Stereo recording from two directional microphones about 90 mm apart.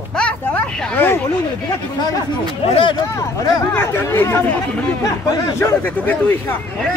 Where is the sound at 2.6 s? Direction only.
90° left.